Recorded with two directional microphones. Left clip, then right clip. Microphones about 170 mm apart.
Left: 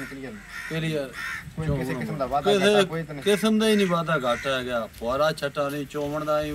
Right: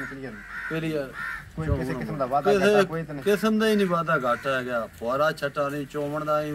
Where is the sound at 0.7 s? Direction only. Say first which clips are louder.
Left 1 dB; centre (ahead or behind).